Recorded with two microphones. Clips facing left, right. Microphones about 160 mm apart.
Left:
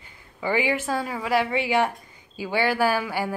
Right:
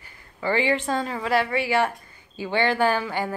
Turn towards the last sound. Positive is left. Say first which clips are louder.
# even
turn(degrees=10)  # may be behind; listen again after turning